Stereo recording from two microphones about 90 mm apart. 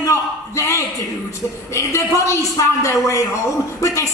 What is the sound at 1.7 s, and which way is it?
A woman's voice, 35° left (ahead or behind).